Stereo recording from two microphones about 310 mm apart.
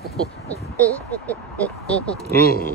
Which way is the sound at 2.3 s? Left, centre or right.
Left.